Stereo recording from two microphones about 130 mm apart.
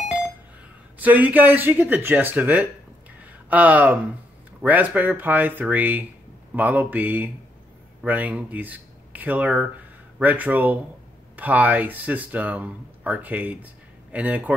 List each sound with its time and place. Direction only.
0.9 s speech: 15° right (ahead or behind)